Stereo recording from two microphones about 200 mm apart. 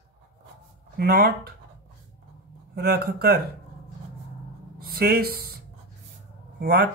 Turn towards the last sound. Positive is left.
turn(degrees=-50)  # may be behind; listen again after turning